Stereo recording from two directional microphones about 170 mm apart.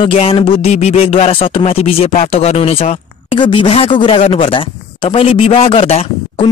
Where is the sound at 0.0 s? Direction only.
35° left (ahead or behind).